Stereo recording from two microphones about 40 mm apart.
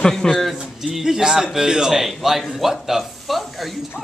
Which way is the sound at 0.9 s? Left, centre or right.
Centre.